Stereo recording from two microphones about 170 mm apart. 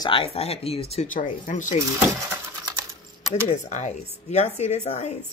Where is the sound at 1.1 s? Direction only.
50° left (ahead or behind).